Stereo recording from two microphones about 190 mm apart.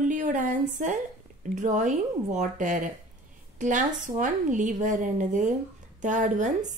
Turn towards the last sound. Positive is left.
turn(degrees=-40)  # may be behind; listen again after turning